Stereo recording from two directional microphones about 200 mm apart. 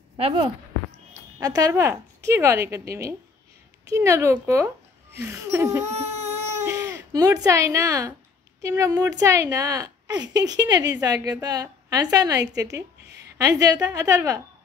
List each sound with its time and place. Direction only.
0.2 s a woman's voice: 25° right (ahead or behind)
5.9 s baby cry: 35° right (ahead or behind)
6.6 s a child's voice: 10° right (ahead or behind)